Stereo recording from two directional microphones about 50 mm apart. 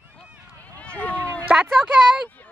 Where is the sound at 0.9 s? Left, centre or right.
Left.